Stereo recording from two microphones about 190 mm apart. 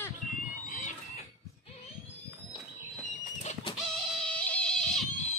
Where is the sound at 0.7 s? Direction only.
40° left (ahead or behind).